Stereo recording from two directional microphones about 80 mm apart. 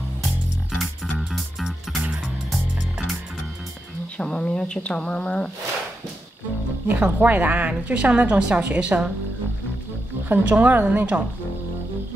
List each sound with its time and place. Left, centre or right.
1.1 s music: centre
4.2 s a woman's voice: centre
6.9 s a woman's voice: centre
10.2 s a woman's voice: right